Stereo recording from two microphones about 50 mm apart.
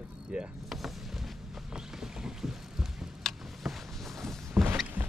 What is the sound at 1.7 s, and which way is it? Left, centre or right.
Clip-clop, centre.